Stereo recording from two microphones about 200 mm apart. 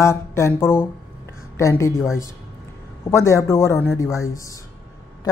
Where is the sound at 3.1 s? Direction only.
15° left (ahead or behind).